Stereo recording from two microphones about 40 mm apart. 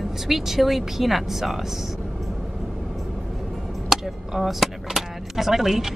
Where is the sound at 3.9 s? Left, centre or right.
Centre.